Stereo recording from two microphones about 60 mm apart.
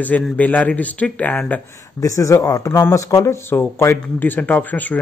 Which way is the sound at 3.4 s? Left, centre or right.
Left.